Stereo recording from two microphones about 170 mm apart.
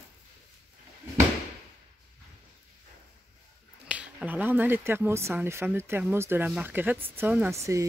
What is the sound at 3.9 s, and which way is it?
Speech, 10° right (ahead or behind).